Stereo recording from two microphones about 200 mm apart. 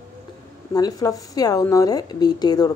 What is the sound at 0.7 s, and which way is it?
Speech, 20° left (ahead or behind).